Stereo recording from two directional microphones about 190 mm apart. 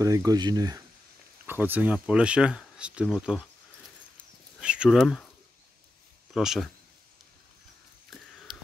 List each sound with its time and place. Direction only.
0.0 s speech: 15° right (ahead or behind)
1.4 s speech: 10° right (ahead or behind)
4.6 s speech: 5° right (ahead or behind)
6.3 s speech: centre (ahead or behind)